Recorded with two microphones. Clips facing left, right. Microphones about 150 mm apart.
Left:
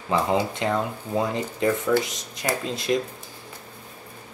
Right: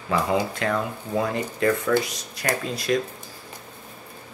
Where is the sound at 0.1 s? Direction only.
25° left (ahead or behind).